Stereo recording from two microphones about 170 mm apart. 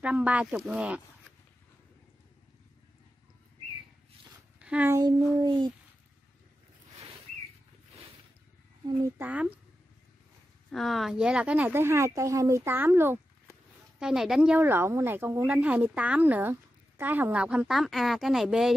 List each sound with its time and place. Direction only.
0.0 s speech: 10° right (ahead or behind)
4.6 s a sound: 5° right (ahead or behind)
4.9 s a child's voice: 25° right (ahead or behind)
9.2 s speech: 10° right (ahead or behind)
10.7 s speech: centre (ahead or behind)